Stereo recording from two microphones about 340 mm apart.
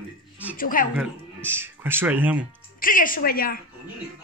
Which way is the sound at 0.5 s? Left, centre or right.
Left.